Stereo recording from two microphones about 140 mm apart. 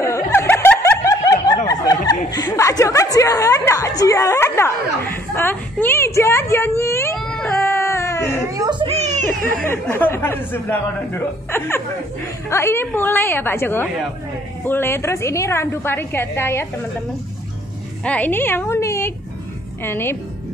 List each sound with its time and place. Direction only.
0.0 s snicker: 20° left (ahead or behind)
1.7 s chuckle: 25° left (ahead or behind)
7.2 s baby cry: 5° left (ahead or behind)
7.6 s baby cry: 20° left (ahead or behind)
8.5 s a child's voice: 35° right (ahead or behind)
8.9 s a child's voice: 55° right (ahead or behind)
9.6 s speech: 10° left (ahead or behind)
18.0 s a woman's voice: 10° left (ahead or behind)